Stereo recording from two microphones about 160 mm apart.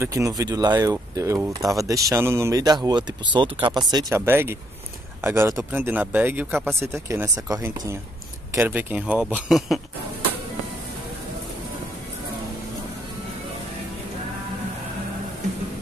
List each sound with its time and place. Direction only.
0.0 s speech: 20° right (ahead or behind)
4.1 s speech: 15° right (ahead or behind)